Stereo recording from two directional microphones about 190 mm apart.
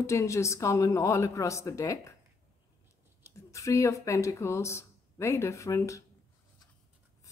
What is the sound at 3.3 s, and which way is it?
A woman's voice, 15° left (ahead or behind).